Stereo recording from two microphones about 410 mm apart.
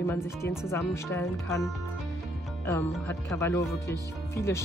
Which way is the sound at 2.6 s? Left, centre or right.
Centre.